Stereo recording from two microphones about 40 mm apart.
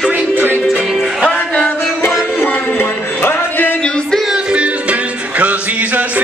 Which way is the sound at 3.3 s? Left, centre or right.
Left.